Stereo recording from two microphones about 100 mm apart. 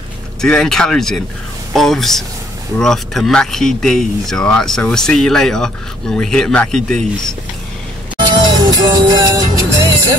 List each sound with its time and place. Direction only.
0.4 s speech: 5° left (ahead or behind)
8.5 s music: 40° right (ahead or behind)